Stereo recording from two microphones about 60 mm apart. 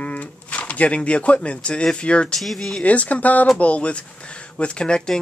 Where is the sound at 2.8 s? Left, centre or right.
Left.